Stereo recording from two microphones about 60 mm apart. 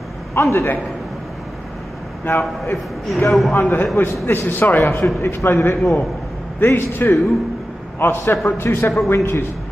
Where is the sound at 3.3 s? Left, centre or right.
Centre.